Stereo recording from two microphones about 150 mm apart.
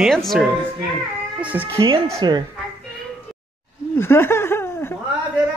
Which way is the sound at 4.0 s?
15° left (ahead or behind).